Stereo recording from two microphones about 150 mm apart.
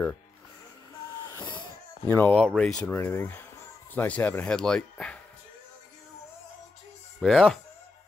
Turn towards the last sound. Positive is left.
turn(degrees=0)  # may be behind; listen again after turning